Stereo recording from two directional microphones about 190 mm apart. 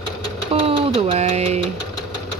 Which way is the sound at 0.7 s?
35° right (ahead or behind).